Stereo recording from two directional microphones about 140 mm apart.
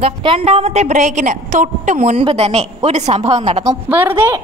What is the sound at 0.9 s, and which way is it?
A woman's voice, 65° right (ahead or behind).